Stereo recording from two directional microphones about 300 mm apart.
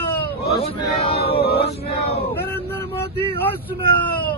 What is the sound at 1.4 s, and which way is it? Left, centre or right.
Chant, left.